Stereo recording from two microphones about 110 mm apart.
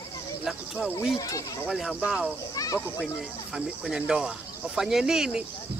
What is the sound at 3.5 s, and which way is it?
Speech, 5° right (ahead or behind).